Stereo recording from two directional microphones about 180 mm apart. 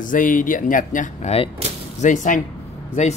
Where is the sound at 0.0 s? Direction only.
50° left (ahead or behind).